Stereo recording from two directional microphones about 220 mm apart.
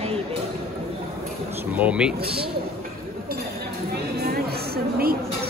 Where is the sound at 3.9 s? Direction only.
45° right (ahead or behind).